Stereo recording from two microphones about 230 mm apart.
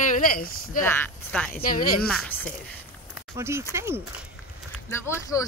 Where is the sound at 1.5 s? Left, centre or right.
Left.